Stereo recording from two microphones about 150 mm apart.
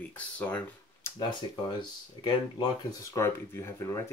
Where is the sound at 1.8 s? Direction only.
30° left (ahead or behind).